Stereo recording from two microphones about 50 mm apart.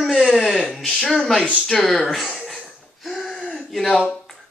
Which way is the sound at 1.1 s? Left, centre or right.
Centre.